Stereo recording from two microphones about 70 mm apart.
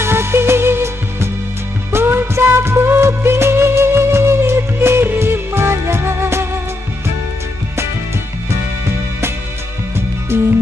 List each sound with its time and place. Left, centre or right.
0.0 s music: right
10.3 s music: right